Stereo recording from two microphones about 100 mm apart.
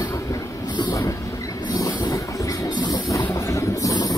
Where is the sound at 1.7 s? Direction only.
35° left (ahead or behind).